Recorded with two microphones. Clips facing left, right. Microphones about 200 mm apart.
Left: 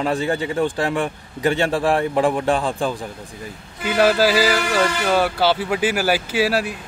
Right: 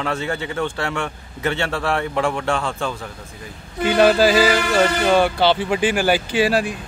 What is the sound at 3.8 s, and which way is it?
Speech, 5° left (ahead or behind).